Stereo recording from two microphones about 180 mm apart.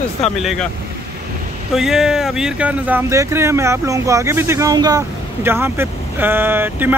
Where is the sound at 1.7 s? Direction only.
Centre (ahead or behind).